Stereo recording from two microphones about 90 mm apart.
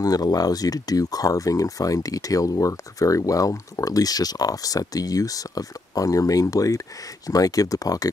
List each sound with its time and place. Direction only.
0.0 s speech: 45° left (ahead or behind)